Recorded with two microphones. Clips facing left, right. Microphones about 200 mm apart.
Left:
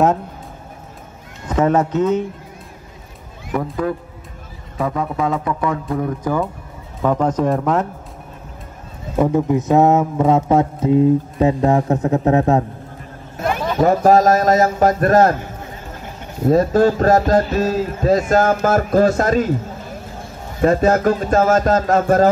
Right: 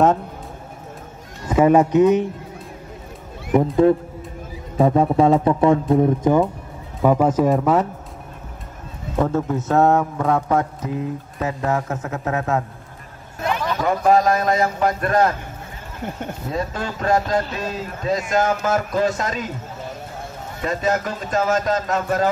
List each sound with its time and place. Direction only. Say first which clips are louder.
1.5 s speech: right 2 dB; 10° right (ahead or behind)
3.5 s speech: right 5 dB; 25° right (ahead or behind)
4.7 s speech: right 6 dB; 30° right (ahead or behind)
7.0 s speech: right 1 dB; 10° right (ahead or behind)
9.2 s a man's voice: left 5 dB; 15° left (ahead or behind); by 12.6 s 35° left (ahead or behind)
13.8 s a man's voice: left 4 dB; 45° left (ahead or behind)
16.4 s a man's voice: left 14 dB; 45° left (ahead or behind)
20.6 s a man's voice: left 8 dB; 45° left (ahead or behind)